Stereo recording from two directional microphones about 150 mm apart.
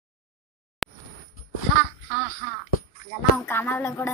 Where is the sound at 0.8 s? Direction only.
Centre (ahead or behind).